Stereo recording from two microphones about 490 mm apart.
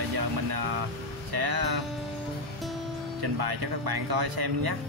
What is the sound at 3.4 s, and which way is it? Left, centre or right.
Speech, right.